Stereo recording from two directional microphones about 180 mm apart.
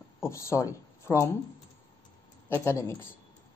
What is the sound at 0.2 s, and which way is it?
Speech, 15° left (ahead or behind).